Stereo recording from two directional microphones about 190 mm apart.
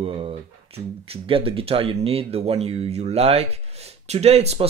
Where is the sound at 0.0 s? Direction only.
30° right (ahead or behind).